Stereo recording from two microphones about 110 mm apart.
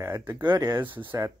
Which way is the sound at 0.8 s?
50° right (ahead or behind).